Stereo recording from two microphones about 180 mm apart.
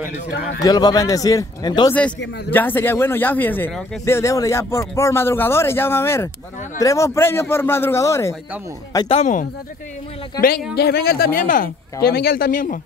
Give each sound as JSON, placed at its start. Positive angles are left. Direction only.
{"t": 0.6, "sound": "speech", "side_deg": 20}
{"t": 2.5, "sound": "a man's voice", "side_deg": 10}
{"t": 9.1, "sound": "speech", "side_deg": 40}
{"t": 10.8, "sound": "speech", "side_deg": 60}